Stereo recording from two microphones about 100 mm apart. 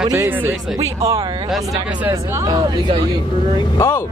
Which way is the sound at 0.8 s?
35° right (ahead or behind).